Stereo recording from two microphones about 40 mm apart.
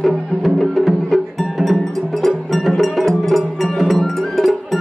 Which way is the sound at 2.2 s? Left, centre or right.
Centre.